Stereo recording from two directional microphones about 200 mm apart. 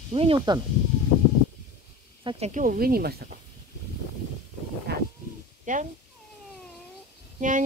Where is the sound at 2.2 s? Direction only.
35° right (ahead or behind); by 3.2 s 50° right (ahead or behind).